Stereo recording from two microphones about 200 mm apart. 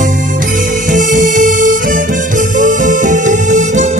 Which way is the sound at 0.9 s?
40° right (ahead or behind).